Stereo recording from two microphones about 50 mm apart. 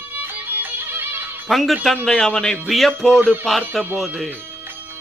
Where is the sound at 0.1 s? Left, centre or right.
Right.